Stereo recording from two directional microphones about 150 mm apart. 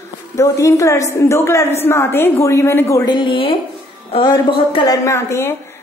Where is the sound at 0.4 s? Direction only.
20° left (ahead or behind).